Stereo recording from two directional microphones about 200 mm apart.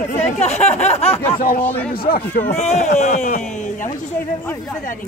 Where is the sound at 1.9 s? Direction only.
45° left (ahead or behind).